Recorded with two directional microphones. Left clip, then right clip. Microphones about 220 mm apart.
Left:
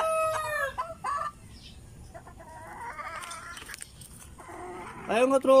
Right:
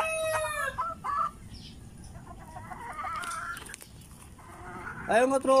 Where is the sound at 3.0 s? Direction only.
20° left (ahead or behind).